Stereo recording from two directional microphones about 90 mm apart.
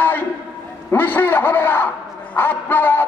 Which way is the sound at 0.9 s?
20° left (ahead or behind).